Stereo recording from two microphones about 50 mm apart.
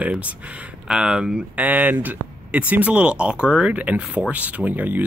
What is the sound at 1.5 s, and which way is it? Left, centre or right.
Speech, right.